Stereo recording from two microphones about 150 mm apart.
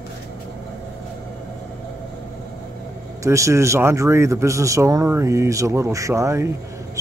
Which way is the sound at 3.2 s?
20° right (ahead or behind).